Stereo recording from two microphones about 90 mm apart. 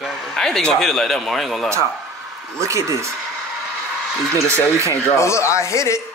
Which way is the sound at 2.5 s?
35° right (ahead or behind).